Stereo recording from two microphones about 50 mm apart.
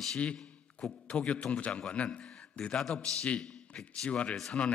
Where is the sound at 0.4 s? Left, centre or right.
Centre.